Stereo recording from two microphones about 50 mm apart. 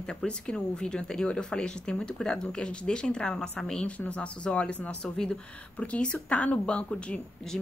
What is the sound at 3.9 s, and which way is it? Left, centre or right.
Speech, left.